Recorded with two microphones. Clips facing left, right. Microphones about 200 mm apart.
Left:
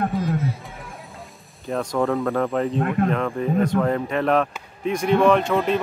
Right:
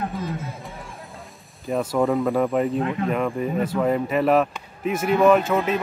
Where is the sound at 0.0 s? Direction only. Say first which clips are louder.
Left 5 dB; 50° left (ahead or behind).